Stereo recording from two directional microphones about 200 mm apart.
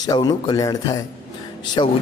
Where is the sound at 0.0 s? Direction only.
20° left (ahead or behind).